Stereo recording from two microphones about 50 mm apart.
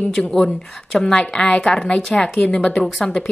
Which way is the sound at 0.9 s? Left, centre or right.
Centre.